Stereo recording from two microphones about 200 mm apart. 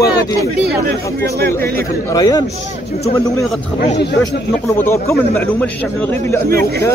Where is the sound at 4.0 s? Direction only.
60° left (ahead or behind).